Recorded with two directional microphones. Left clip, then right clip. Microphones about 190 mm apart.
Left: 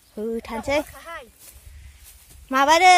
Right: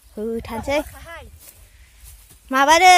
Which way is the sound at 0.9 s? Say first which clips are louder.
Left 1 dB; 10° left (ahead or behind).